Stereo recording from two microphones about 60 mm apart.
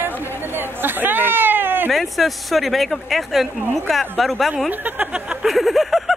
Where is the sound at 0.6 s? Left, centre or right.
Right.